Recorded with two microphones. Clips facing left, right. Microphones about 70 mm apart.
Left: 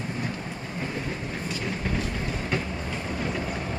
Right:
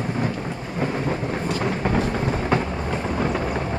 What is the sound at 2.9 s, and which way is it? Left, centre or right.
Vehicle, right.